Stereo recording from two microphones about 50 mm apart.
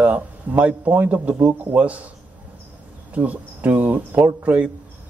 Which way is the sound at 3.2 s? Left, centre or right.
Right.